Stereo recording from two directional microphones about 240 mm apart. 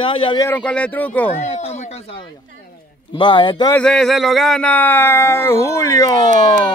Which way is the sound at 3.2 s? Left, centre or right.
Centre.